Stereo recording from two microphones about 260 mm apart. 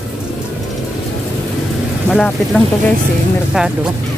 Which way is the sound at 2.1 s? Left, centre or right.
Centre.